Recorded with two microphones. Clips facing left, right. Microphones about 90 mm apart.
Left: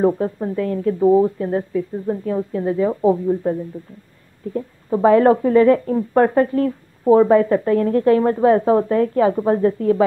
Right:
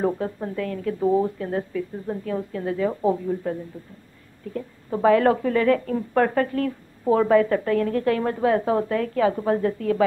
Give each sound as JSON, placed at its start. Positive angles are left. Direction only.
{"t": 0.0, "sound": "speech", "side_deg": 25}
{"t": 4.6, "sound": "speech", "side_deg": 20}